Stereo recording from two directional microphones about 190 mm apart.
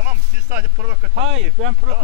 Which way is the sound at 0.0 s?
45° right (ahead or behind).